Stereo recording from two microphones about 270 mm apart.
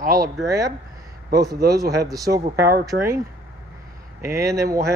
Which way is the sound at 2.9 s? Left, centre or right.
Right.